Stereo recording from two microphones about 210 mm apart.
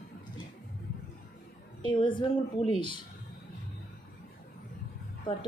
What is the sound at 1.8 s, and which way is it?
Speech, 20° left (ahead or behind).